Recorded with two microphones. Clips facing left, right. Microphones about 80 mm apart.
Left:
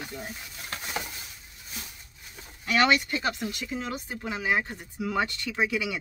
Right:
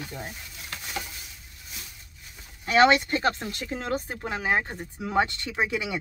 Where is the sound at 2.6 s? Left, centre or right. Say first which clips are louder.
Right 4 dB; right.